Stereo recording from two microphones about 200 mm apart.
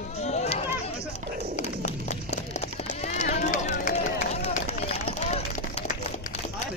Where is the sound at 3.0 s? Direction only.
35° left (ahead or behind).